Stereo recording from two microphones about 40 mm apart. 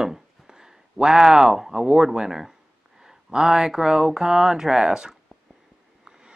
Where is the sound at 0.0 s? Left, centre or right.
Centre.